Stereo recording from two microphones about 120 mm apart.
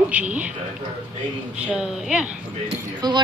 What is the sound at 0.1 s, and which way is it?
Speech, 10° right (ahead or behind).